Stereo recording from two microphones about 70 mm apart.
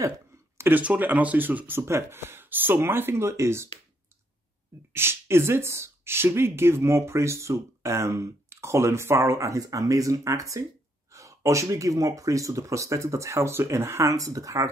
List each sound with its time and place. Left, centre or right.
0.6 s speech: right
4.9 s speech: right
14.1 s speech: right